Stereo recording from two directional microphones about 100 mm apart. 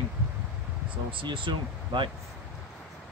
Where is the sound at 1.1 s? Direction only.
55° right (ahead or behind).